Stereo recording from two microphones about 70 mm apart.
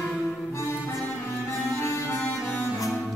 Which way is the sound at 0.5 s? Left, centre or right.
Left.